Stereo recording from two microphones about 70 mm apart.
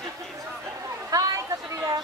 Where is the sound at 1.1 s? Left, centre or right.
Right.